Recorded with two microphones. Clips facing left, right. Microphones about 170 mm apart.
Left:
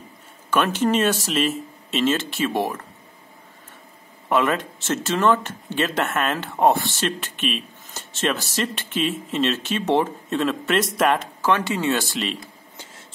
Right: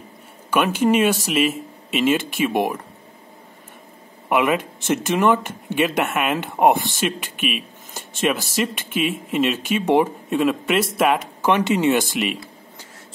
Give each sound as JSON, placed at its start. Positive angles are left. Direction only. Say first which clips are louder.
{"t": 0.5, "sound": "speech", "louder": "right 2 dB", "side_deg": -10}
{"t": 4.3, "sound": "speech", "louder": "right 2 dB", "side_deg": -10}
{"t": 11.4, "sound": "speech", "louder": "right 4 dB", "side_deg": -20}